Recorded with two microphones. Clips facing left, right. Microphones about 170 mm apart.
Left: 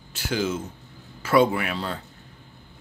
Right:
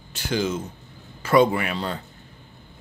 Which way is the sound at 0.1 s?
5° left (ahead or behind).